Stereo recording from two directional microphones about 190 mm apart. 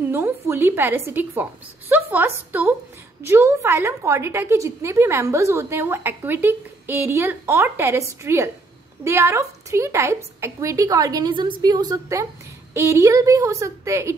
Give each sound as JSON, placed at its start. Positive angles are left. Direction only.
{"t": 0.0, "sound": "a woman's voice", "side_deg": -10}